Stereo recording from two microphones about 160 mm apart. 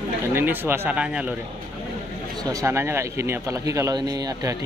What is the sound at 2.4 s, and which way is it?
Speech, 20° right (ahead or behind).